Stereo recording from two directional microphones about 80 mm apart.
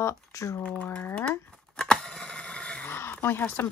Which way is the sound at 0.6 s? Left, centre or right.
Centre.